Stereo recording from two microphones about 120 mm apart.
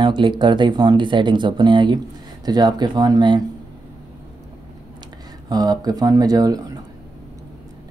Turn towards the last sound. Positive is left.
turn(degrees=-30)  # may be behind; listen again after turning